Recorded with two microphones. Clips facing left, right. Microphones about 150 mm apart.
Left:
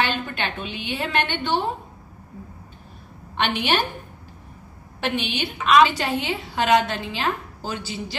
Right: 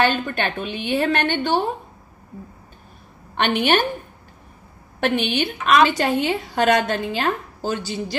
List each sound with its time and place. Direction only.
0.0 s a woman's voice: 45° right (ahead or behind)
3.3 s a woman's voice: 50° right (ahead or behind)
5.0 s a woman's voice: 55° right (ahead or behind)